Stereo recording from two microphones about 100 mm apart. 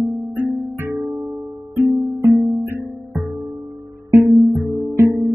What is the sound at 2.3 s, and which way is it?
Music, 40° right (ahead or behind).